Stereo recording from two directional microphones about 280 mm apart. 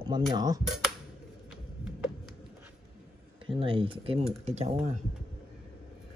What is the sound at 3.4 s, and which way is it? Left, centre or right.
Speech, centre.